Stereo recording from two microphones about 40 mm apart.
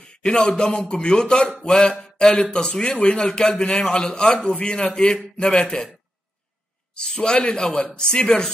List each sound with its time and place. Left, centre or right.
0.0 s speech: left
1.6 s a sound: left
2.5 s speech: left
6.9 s a man's voice: left